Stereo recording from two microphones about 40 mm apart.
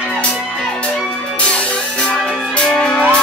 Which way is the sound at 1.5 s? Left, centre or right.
Left.